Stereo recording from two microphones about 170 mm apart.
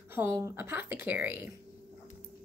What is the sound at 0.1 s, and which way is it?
Speech, 15° right (ahead or behind).